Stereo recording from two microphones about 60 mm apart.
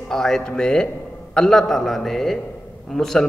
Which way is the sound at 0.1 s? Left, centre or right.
Centre.